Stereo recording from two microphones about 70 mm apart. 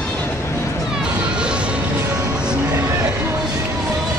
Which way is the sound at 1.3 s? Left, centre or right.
Centre.